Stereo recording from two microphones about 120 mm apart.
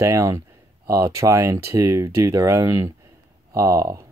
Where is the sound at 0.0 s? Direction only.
25° right (ahead or behind).